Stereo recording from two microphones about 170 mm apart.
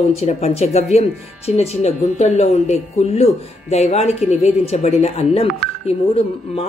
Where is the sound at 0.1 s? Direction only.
40° left (ahead or behind).